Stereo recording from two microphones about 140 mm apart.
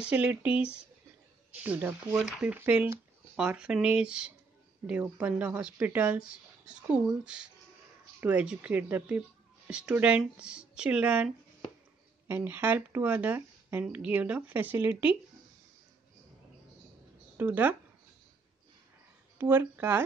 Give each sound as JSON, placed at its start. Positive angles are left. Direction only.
{"t": 0.1, "sound": "speech", "side_deg": -10}
{"t": 17.4, "sound": "speech", "side_deg": -15}
{"t": 19.3, "sound": "speech", "side_deg": -15}